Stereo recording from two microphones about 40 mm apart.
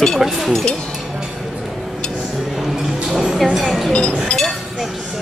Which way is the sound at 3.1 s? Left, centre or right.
Centre.